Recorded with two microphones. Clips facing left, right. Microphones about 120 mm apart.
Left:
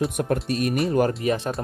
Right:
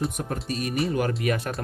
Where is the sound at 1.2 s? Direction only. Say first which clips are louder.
Left 3 dB; 25° left (ahead or behind).